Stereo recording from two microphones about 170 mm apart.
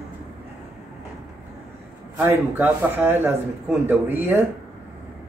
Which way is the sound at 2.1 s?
15° right (ahead or behind).